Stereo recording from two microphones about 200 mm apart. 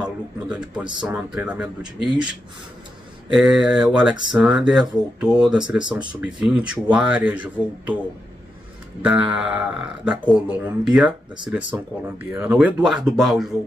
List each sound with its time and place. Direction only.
0.0 s a man's voice: 5° right (ahead or behind)
3.3 s speech: 5° right (ahead or behind)
9.0 s speech: 5° right (ahead or behind)